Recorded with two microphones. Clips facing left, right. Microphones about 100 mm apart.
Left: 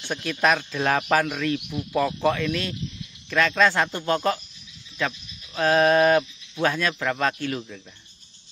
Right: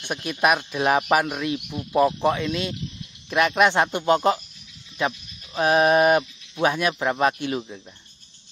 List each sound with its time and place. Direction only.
0.0 s speech: 15° right (ahead or behind)